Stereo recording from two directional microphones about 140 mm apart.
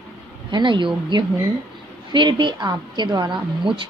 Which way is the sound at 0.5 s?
35° right (ahead or behind).